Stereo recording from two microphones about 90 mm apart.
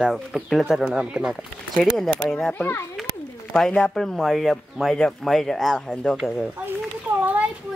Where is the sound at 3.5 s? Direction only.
10° left (ahead or behind).